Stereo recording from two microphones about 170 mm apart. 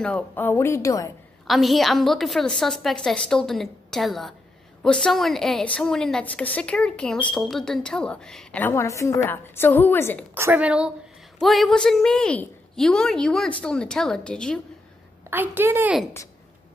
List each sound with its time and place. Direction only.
0.0 s speech: 10° left (ahead or behind)
1.5 s a woman's voice: centre (ahead or behind)
10.3 s a woman's voice: 10° right (ahead or behind); by 14.6 s 5° left (ahead or behind)
15.2 s a woman's voice: 10° right (ahead or behind)